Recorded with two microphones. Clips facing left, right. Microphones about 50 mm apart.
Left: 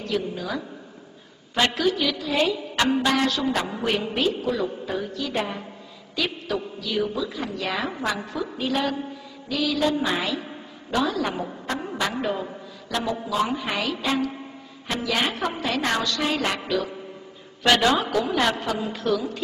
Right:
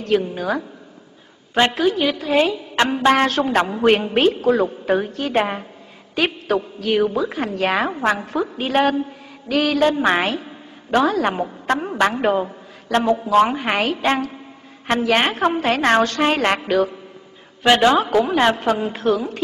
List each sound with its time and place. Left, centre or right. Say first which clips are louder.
0.0 s a woman's voice: right 7 dB; right
1.5 s a woman's voice: right 5 dB; right
17.6 s a woman's voice: right 5 dB; right